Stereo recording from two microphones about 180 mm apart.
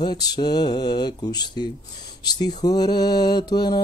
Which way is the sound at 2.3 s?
20° left (ahead or behind).